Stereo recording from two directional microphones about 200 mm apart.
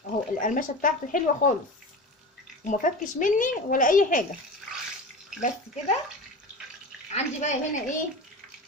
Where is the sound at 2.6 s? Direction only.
40° left (ahead or behind).